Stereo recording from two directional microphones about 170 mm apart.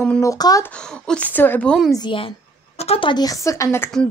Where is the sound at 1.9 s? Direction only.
30° left (ahead or behind).